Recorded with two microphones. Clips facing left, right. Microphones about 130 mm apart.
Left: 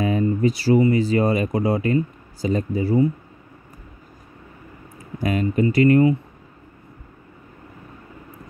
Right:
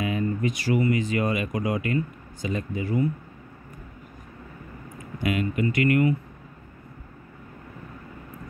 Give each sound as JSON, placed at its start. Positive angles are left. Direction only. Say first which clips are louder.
{"t": 0.0, "sound": "speech", "louder": "left 6 dB", "side_deg": 35}
{"t": 5.2, "sound": "speech", "louder": "left 5 dB", "side_deg": 35}